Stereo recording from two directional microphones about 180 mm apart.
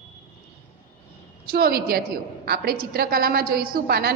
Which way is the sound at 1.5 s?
55° right (ahead or behind).